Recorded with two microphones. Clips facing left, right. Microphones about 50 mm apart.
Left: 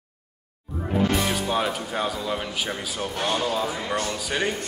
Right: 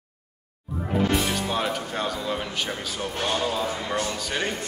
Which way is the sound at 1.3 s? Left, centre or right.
Centre.